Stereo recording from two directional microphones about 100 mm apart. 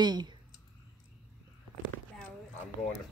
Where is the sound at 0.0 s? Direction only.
45° right (ahead or behind).